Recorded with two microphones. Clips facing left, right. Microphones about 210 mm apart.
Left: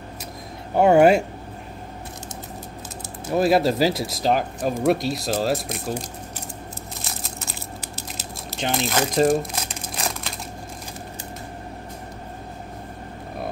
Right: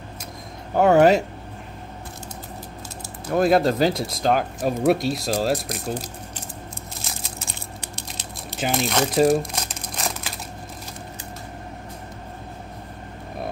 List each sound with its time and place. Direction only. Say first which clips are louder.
0.7 s speech: left 1 dB; 10° left (ahead or behind)
3.3 s speech: even; 5° left (ahead or behind)
7.0 s a sound: left 1 dB; centre (ahead or behind)